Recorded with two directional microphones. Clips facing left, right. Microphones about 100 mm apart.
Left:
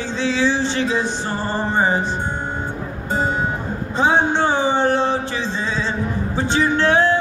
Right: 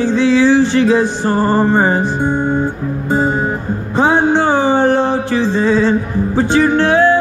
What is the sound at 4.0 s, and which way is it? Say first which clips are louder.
Music: right 5 dB; 50° right (ahead or behind).